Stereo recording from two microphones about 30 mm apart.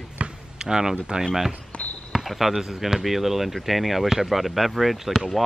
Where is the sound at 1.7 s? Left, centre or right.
Left.